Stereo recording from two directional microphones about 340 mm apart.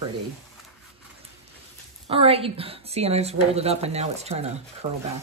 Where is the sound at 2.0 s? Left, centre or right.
Centre.